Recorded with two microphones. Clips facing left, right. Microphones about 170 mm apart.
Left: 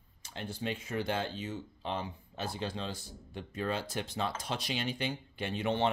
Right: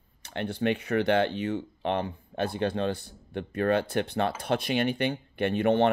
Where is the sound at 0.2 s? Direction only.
65° right (ahead or behind).